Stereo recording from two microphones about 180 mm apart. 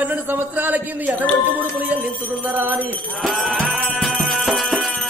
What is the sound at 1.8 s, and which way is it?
Music, 10° right (ahead or behind).